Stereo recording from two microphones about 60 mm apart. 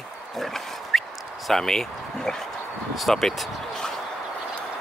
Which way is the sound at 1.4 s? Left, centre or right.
Centre.